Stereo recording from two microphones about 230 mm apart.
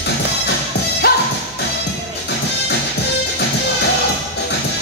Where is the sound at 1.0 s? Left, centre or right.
Left.